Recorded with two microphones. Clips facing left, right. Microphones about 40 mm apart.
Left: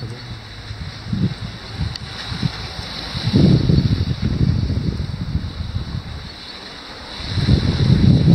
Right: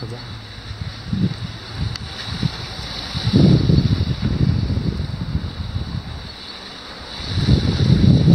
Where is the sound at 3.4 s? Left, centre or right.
Centre.